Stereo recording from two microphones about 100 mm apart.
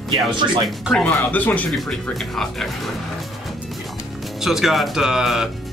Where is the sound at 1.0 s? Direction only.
15° left (ahead or behind).